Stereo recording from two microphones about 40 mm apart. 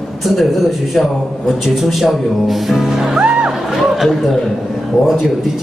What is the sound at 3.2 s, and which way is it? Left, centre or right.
Speech, right.